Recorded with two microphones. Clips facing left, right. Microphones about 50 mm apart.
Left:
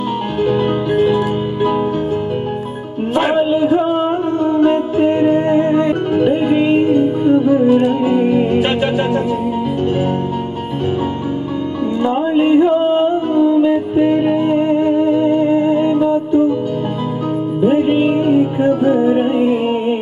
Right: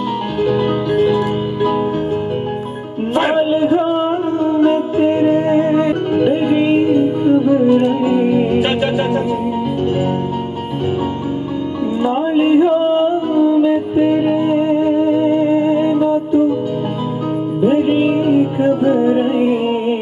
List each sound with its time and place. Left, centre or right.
0.4 s music: left
3.2 s music: centre
12.0 s music: centre
17.6 s music: centre